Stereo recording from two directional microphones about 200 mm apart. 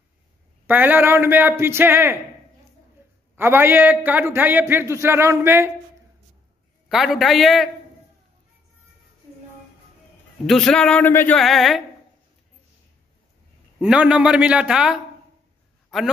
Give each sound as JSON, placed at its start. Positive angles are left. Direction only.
{"t": 0.7, "sound": "a man's voice", "side_deg": -10}
{"t": 3.3, "sound": "a man's voice", "side_deg": -10}
{"t": 6.9, "sound": "a man's voice", "side_deg": 0}
{"t": 10.4, "sound": "a man's voice", "side_deg": 0}
{"t": 13.7, "sound": "a man's voice", "side_deg": -5}